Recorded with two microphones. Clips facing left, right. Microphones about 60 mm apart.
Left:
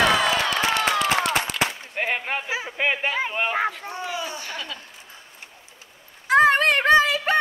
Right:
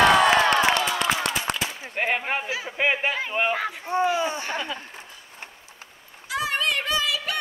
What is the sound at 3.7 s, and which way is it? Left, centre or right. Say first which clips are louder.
Speech: right 7 dB; right.